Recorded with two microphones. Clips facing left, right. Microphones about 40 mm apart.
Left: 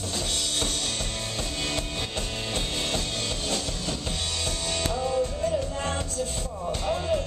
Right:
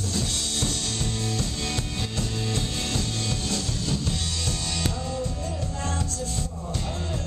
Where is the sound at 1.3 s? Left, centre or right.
Left.